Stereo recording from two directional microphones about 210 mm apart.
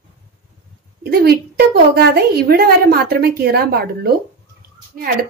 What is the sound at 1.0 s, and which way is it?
A woman's voice, 50° right (ahead or behind).